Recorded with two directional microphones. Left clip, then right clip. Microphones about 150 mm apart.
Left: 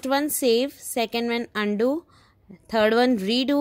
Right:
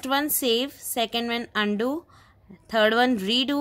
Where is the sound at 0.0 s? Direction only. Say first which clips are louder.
Left 2 dB; 20° left (ahead or behind).